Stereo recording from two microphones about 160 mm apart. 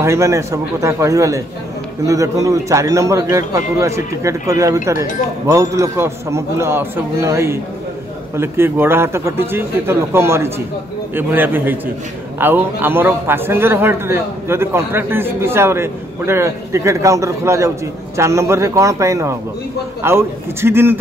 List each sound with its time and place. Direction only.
0.0 s a man's voice: 15° right (ahead or behind)